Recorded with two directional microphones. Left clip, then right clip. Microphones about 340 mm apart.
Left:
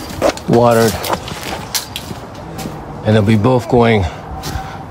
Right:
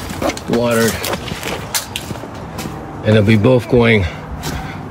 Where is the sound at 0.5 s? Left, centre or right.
Centre.